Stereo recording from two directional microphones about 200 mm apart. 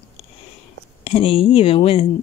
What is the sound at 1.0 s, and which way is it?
Speech, 30° left (ahead or behind).